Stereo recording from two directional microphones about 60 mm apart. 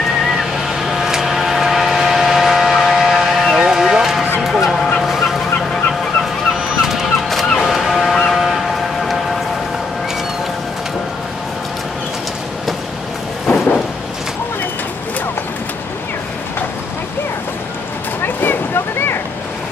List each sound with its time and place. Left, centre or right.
0.3 s vehicle: centre
4.4 s music: centre
5.0 s fowl: centre
6.8 s fowl: centre
18.2 s boat: left